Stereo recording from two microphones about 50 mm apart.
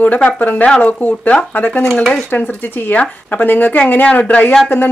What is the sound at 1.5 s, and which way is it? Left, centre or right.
Speech, left.